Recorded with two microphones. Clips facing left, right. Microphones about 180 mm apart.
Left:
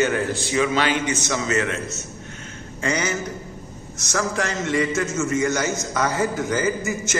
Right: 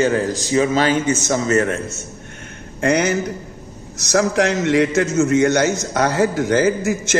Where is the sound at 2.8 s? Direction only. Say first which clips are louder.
Right 7 dB; 65° right (ahead or behind).